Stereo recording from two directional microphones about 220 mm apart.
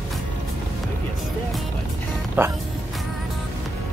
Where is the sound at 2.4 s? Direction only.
10° right (ahead or behind).